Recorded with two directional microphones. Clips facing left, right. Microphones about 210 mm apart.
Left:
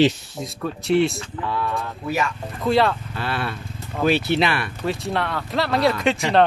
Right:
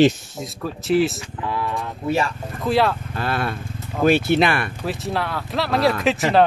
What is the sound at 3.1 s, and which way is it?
Speech, 45° right (ahead or behind).